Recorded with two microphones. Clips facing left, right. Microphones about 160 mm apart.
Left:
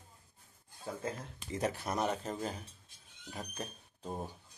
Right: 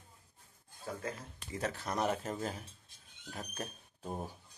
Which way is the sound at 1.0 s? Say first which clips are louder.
Left 2 dB; 20° left (ahead or behind).